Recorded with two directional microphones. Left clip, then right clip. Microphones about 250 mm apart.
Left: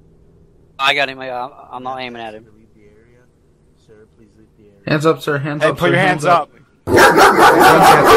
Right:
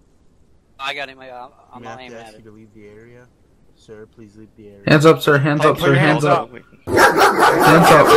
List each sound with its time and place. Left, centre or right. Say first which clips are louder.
0.7 s a man's voice: left 11 dB; left
2.8 s speech: right 7 dB; right
4.8 s speech: right 4 dB; centre
5.8 s a man's voice: left 1 dB; centre
6.8 s dog: left 4 dB; left